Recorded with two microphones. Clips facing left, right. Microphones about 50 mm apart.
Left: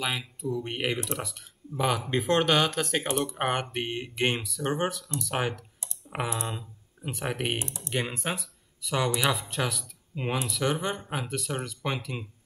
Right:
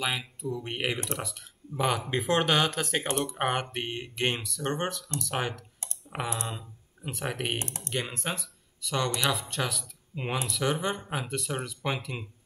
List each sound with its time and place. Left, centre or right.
0.0 s speech: centre
7.5 s speech: right
7.9 s speech: centre